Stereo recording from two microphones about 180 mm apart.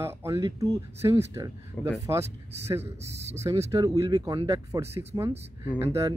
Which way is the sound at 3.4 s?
15° right (ahead or behind).